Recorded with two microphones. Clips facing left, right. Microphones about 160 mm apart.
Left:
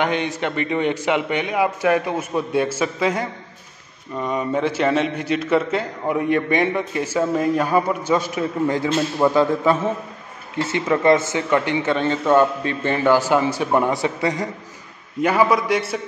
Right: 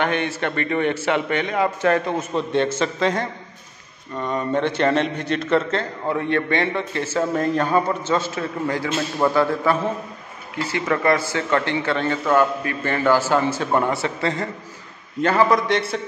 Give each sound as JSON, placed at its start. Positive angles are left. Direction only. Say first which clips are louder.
{"t": 0.0, "sound": "a man's voice", "louder": "left 1 dB", "side_deg": 15}